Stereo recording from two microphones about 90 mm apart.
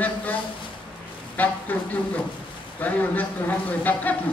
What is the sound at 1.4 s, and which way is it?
A man's voice, 20° left (ahead or behind).